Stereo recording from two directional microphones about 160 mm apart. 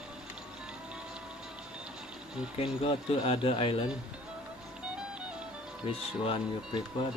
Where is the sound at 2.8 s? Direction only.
35° left (ahead or behind).